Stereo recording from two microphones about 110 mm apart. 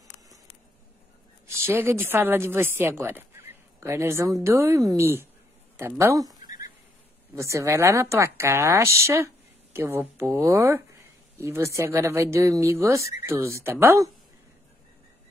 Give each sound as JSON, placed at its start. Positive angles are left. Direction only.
{"t": 1.7, "sound": "speech", "side_deg": -20}
{"t": 5.8, "sound": "a sound", "side_deg": -25}
{"t": 7.3, "sound": "speech", "side_deg": -25}